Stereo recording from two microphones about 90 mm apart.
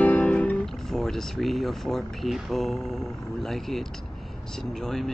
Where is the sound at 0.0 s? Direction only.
15° left (ahead or behind).